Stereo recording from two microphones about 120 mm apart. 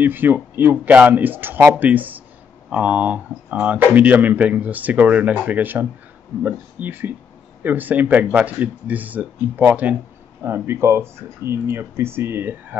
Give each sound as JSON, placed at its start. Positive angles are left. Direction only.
{"t": 0.0, "sound": "speech", "side_deg": -15}